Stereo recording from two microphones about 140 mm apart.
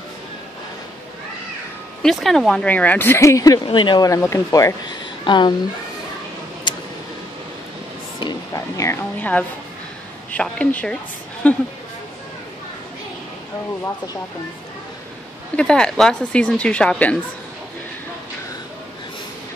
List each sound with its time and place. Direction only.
2.0 s speech: centre (ahead or behind); by 4.1 s 35° left (ahead or behind)
4.1 s speech: 20° left (ahead or behind)
6.7 s a sound: 35° left (ahead or behind)
8.2 s music: 25° left (ahead or behind)
9.2 s speech: 10° left (ahead or behind)
15.5 s speech: 5° left (ahead or behind)